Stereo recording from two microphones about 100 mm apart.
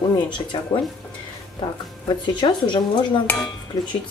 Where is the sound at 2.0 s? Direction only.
50° left (ahead or behind).